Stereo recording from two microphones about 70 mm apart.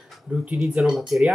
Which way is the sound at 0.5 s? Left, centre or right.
Centre.